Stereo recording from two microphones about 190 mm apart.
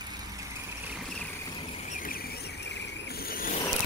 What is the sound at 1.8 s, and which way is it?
Vehicle, 45° left (ahead or behind).